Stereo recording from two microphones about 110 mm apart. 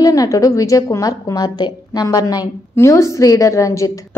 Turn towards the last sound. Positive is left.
turn(degrees=30)  # may be behind; listen again after turning